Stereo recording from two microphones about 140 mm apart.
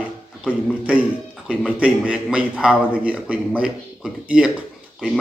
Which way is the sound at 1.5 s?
10° right (ahead or behind).